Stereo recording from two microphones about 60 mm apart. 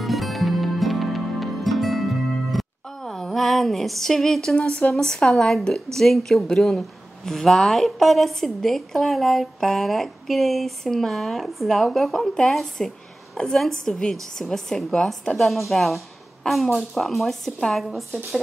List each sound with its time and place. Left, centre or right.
0.0 s music: centre
4.6 s a woman's voice: centre